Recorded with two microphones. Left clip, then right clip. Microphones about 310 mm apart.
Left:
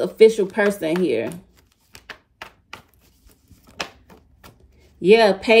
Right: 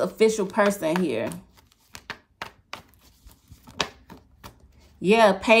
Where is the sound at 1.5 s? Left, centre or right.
Centre.